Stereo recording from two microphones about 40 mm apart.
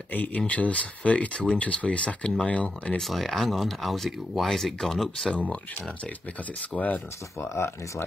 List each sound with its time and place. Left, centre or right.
0.1 s speech: left
3.0 s speech: centre
5.3 s speech: left
6.7 s speech: left